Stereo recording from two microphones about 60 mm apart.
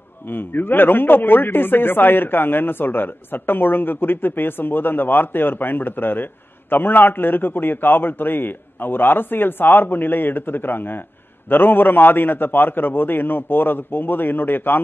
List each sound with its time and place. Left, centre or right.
0.3 s a man's voice: left